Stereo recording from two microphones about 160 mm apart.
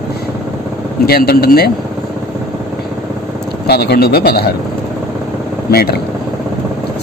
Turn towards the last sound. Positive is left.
turn(degrees=75)  # may be behind; listen again after turning